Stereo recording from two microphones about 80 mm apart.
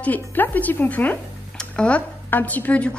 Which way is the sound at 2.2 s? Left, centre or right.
Left.